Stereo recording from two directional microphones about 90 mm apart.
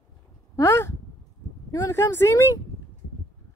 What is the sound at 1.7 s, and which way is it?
Speech, 35° left (ahead or behind).